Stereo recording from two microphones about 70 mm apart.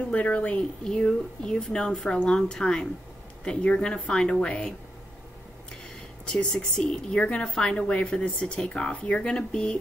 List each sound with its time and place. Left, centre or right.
0.1 s speech: left
6.2 s speech: centre